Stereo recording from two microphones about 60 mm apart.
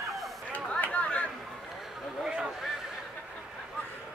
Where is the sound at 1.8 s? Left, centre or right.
Centre.